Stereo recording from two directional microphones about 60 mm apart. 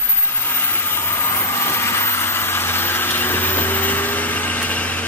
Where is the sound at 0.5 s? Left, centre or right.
Left.